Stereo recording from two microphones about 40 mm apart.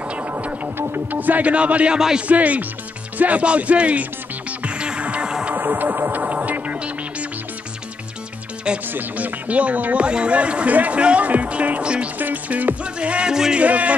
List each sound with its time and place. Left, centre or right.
0.7 s music: right
1.1 s a man's voice: right
1.5 s speech: right
3.2 s music: right
5.5 s music: right
8.8 s speech: right
10.0 s speech: right
11.0 s music: right
11.2 s speech: right
11.8 s music: right
12.4 s a man's voice: right
12.8 s music: right
13.3 s music: centre
13.6 s speech: right